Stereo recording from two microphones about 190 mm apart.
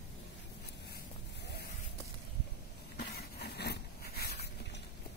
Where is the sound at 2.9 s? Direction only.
60° left (ahead or behind).